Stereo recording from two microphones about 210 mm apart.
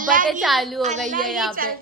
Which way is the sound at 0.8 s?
35° right (ahead or behind).